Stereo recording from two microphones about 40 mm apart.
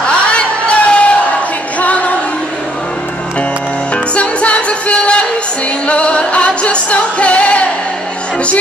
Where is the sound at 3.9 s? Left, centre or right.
Left.